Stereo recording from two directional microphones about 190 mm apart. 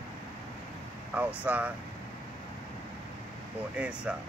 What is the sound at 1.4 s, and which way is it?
Speech, 5° right (ahead or behind).